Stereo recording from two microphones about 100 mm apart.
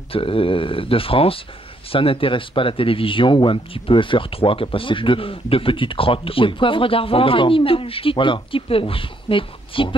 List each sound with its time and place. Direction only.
0.1 s speech: 65° left (ahead or behind)